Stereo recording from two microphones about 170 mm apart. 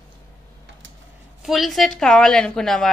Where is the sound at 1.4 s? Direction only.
Centre (ahead or behind).